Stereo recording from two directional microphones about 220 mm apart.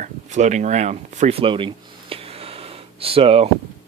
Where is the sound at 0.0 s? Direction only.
30° right (ahead or behind).